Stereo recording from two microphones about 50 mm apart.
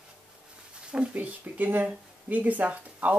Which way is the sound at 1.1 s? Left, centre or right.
Right.